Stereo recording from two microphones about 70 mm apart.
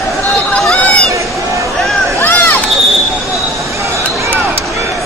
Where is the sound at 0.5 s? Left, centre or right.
Centre.